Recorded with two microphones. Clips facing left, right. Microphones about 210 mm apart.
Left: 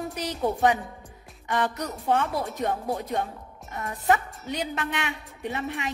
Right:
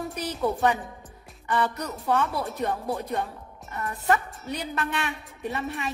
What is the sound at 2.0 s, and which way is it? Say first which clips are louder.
A woman's voice: even; 15° left (ahead or behind).